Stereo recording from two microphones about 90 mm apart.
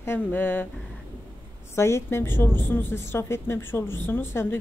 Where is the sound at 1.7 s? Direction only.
30° left (ahead or behind).